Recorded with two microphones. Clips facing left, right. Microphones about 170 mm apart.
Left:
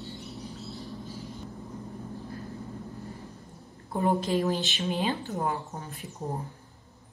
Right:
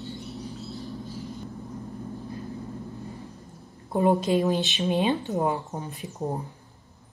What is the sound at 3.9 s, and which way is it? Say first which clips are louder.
Speech: right 4 dB; 15° right (ahead or behind).